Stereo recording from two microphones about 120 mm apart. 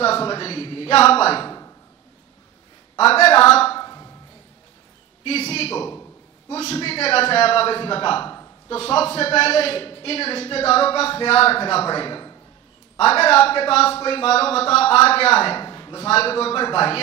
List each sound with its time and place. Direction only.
0.0 s speech: 50° left (ahead or behind)
3.0 s speech: 55° left (ahead or behind)
3.7 s a sound: 30° left (ahead or behind)
5.2 s a man's voice: 55° left (ahead or behind); by 12.4 s 40° left (ahead or behind)
13.0 s speech: 55° left (ahead or behind)
15.6 s a sound: 35° left (ahead or behind)
16.0 s a man's voice: 55° left (ahead or behind)